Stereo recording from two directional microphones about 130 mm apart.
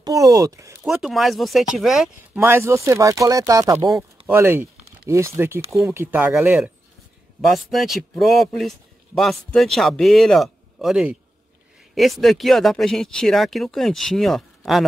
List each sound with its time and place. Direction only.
0.0 s speech: 25° right (ahead or behind)
0.8 s speech: centre (ahead or behind)
2.3 s speech: 20° right (ahead or behind)
7.5 s speech: centre (ahead or behind)